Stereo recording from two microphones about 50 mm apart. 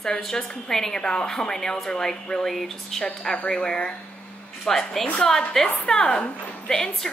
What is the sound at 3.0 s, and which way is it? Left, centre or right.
A woman's voice, left.